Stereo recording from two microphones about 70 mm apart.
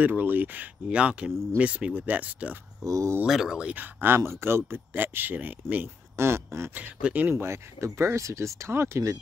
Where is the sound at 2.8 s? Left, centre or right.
Right.